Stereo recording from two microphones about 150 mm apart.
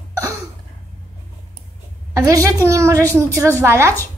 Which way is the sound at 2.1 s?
20° right (ahead or behind).